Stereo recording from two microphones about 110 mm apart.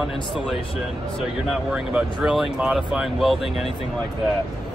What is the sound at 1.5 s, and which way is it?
Speech, 5° right (ahead or behind).